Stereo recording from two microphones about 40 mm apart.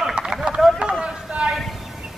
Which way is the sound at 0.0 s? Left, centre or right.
Centre.